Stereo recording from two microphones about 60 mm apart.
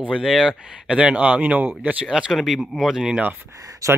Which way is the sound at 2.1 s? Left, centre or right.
Centre.